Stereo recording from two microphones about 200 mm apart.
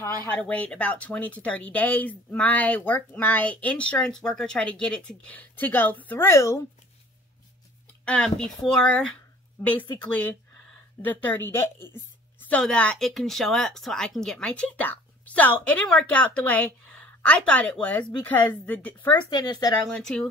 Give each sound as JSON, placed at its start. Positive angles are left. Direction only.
{"t": 0.0, "sound": "speech", "side_deg": 10}
{"t": 8.0, "sound": "a woman's voice", "side_deg": 5}
{"t": 19.3, "sound": "speech", "side_deg": 20}
{"t": 19.9, "sound": "a woman's voice", "side_deg": 5}